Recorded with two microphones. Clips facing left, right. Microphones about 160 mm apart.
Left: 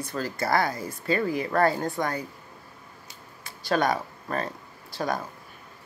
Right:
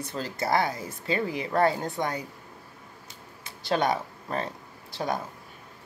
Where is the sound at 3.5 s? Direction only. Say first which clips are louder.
Left 1 dB; 20° right (ahead or behind).